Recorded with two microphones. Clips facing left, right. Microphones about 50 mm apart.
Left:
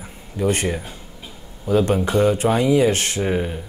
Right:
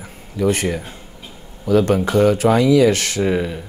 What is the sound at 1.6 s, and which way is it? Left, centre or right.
Speech, right.